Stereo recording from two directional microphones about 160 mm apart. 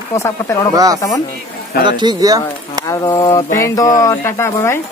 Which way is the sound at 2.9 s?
20° left (ahead or behind).